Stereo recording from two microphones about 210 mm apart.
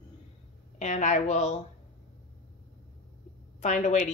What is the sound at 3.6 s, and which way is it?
Speech, 35° left (ahead or behind).